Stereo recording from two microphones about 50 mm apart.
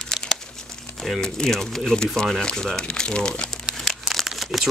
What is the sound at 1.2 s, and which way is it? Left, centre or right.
Speech, centre.